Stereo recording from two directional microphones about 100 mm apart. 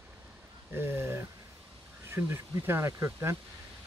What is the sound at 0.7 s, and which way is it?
Speech, 25° right (ahead or behind).